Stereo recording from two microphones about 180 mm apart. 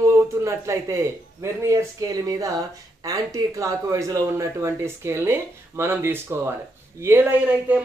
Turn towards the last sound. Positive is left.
turn(degrees=-10)  # may be behind; listen again after turning